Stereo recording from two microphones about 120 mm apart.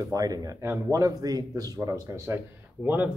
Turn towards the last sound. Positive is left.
turn(degrees=-15)  # may be behind; listen again after turning